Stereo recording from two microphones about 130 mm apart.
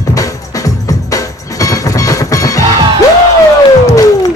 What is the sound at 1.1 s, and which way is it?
Music, 25° left (ahead or behind).